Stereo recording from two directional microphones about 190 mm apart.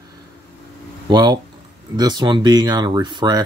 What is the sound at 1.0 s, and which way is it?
Speech, 20° right (ahead or behind).